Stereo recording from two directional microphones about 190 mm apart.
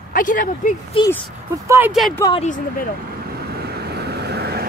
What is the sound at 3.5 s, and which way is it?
Vehicle, 55° right (ahead or behind).